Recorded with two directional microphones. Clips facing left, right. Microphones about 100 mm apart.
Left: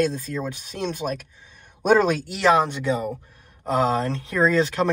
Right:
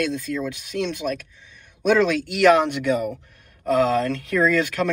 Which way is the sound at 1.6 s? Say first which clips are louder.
Even; 45° left (ahead or behind).